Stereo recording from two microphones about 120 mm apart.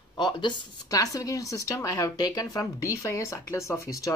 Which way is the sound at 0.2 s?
40° left (ahead or behind).